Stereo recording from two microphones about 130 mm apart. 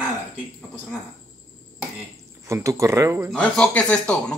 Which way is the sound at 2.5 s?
25° right (ahead or behind).